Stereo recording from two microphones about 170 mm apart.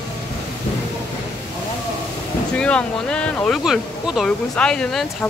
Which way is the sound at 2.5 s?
5° left (ahead or behind).